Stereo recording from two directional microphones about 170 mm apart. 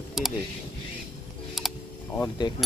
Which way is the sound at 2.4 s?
30° left (ahead or behind).